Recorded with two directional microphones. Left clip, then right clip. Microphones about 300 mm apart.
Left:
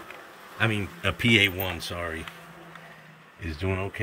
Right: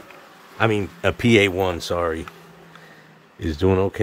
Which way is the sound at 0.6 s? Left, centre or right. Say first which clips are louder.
Right 7 dB; centre.